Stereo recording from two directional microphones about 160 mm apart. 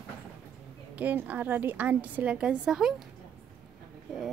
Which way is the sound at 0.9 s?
10° right (ahead or behind).